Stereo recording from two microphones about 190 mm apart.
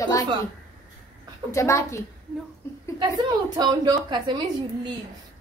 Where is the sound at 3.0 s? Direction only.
20° right (ahead or behind).